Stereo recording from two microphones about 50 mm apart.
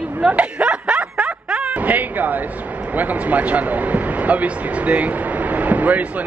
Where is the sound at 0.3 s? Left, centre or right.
Right.